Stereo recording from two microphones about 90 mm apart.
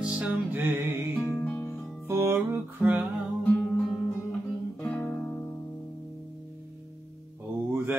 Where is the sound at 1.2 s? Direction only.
15° left (ahead or behind).